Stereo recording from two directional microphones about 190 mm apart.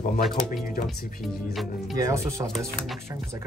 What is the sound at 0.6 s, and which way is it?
Speech, centre (ahead or behind).